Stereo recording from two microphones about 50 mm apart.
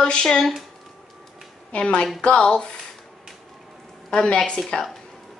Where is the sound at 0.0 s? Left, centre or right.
Centre.